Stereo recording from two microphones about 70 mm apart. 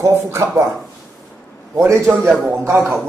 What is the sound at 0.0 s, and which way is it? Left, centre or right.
Speech, right.